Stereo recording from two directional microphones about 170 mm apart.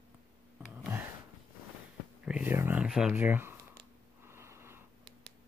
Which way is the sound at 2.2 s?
5° right (ahead or behind).